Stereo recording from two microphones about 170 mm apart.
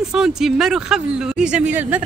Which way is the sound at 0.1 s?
5° right (ahead or behind).